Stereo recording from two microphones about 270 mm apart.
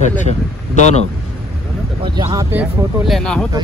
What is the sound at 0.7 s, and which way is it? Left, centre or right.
Speech, left.